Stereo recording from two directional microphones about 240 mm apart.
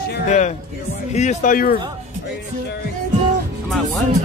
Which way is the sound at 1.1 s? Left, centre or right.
Left.